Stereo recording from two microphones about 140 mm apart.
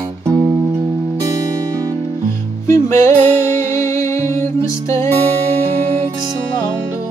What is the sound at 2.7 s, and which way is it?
Music, 20° left (ahead or behind).